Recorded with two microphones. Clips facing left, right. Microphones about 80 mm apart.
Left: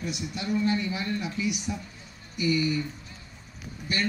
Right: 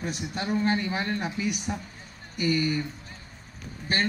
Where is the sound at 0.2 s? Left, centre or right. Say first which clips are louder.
Even; right.